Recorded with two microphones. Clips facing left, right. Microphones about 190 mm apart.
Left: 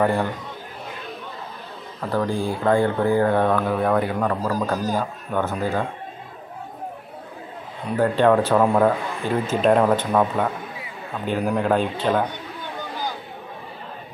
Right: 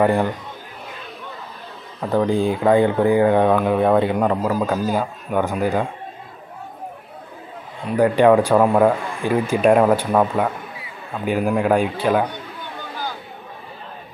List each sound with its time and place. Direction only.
0.0 s speech: 15° right (ahead or behind)
2.0 s speech: 20° right (ahead or behind)
7.9 s speech: 10° right (ahead or behind)